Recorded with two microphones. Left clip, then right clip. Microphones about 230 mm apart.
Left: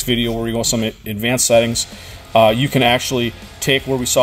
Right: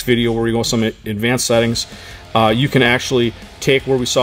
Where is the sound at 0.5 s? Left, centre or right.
Right.